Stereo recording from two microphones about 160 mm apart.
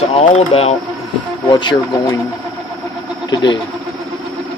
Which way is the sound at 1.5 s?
30° left (ahead or behind).